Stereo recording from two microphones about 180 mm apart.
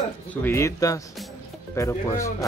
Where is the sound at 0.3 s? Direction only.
10° left (ahead or behind).